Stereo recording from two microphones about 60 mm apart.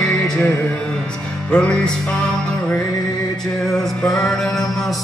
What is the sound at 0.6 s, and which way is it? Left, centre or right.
Music, centre.